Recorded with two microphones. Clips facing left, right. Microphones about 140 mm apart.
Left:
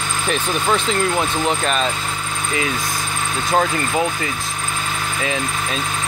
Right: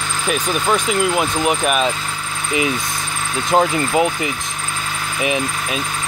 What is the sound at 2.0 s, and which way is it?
Vehicle, 20° left (ahead or behind).